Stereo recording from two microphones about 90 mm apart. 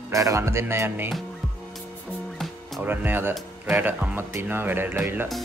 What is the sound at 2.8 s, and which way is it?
Speech, 20° right (ahead or behind).